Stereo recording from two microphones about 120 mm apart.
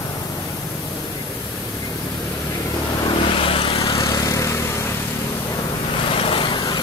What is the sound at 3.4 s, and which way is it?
Vehicle, 50° left (ahead or behind).